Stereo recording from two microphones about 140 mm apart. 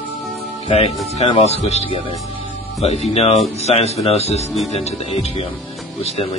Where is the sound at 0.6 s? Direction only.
45° left (ahead or behind).